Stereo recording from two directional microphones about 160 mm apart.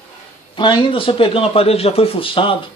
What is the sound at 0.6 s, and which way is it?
A man's voice, 30° left (ahead or behind).